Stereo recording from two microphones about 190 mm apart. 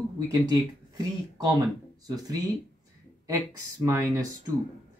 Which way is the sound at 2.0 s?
20° right (ahead or behind).